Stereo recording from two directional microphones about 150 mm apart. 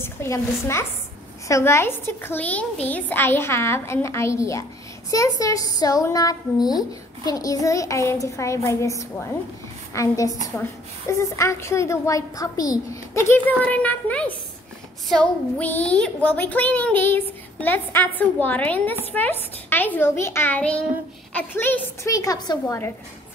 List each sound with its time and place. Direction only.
0.0 s a child's voice: 15° left (ahead or behind)
22.1 s a woman's voice: 25° left (ahead or behind)